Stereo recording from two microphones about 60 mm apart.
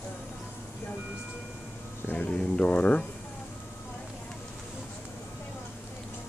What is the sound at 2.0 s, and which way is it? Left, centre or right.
Speech, left.